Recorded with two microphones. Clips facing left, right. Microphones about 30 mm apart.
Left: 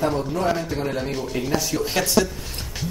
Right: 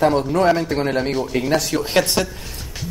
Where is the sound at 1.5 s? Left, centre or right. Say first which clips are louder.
Right 4 dB; right.